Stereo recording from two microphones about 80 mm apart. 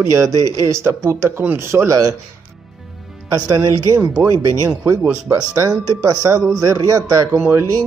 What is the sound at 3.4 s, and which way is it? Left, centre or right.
A man's voice, right.